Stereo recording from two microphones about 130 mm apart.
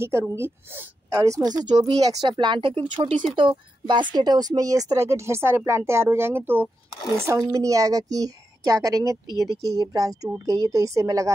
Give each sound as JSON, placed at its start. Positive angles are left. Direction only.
{"t": 0.3, "sound": "a woman's voice", "side_deg": -20}
{"t": 2.3, "sound": "speech", "side_deg": -40}
{"t": 3.3, "sound": "a woman's voice", "side_deg": -40}